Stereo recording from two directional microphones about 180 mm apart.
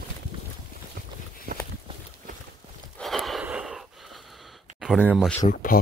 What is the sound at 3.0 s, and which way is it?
Gasp, centre (ahead or behind).